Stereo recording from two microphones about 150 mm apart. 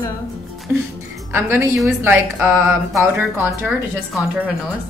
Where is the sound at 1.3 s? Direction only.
15° right (ahead or behind).